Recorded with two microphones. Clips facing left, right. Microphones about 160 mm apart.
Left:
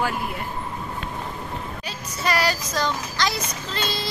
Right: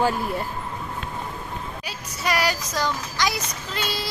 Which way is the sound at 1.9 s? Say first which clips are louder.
Left 1 dB; 15° right (ahead or behind).